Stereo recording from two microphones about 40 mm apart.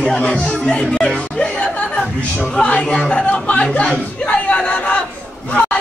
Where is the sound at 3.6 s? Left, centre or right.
Left.